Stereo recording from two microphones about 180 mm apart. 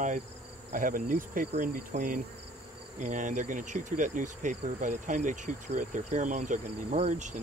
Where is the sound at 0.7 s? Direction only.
50° right (ahead or behind).